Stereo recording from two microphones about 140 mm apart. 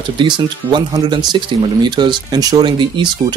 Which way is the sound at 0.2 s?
35° right (ahead or behind).